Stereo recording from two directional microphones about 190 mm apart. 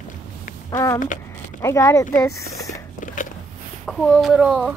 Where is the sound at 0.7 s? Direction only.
20° left (ahead or behind).